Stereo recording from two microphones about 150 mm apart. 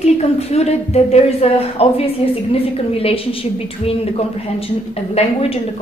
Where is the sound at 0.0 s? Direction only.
45° left (ahead or behind).